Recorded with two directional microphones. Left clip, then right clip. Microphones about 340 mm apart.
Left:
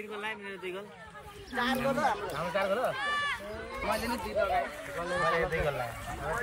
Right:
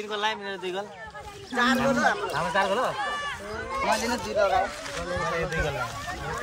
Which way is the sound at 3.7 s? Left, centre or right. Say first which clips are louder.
Right 7 dB; right.